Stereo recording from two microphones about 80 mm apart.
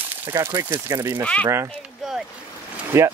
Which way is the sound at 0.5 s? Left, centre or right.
Right.